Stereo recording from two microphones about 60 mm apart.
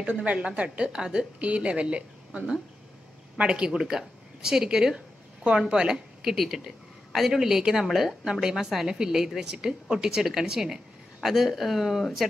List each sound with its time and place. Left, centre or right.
0.0 s a woman's voice: right; by 12.3 s centre